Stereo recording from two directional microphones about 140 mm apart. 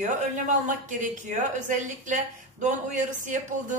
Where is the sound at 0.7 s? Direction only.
65° right (ahead or behind).